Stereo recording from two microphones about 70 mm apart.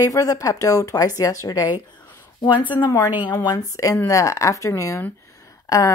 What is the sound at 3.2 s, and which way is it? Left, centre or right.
Speech, left.